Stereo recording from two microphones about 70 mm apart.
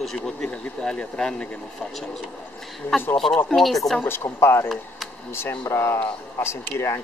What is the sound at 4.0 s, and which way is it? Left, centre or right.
Speech, left.